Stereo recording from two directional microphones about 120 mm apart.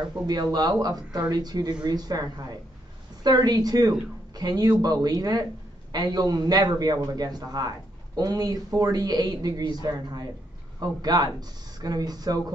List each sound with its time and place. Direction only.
0.3 s a man's voice: 35° right (ahead or behind)